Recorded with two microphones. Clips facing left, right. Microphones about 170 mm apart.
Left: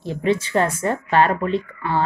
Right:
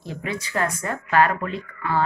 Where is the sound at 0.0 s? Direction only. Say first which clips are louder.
Left 9 dB; 25° left (ahead or behind).